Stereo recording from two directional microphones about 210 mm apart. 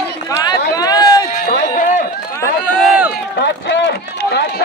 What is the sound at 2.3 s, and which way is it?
Run, 15° left (ahead or behind).